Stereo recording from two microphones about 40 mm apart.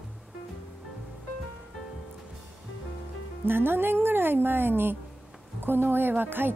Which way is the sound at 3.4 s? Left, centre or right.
Right.